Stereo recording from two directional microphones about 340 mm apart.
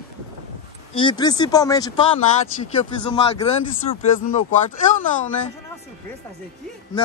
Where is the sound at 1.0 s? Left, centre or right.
Centre.